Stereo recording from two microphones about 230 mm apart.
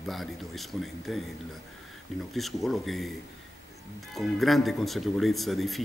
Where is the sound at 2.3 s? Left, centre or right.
Centre.